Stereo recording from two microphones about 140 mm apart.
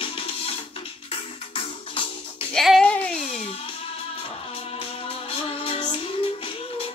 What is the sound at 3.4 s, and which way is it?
Music, 45° left (ahead or behind).